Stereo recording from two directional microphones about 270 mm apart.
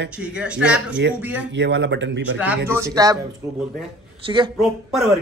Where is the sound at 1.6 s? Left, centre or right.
Right.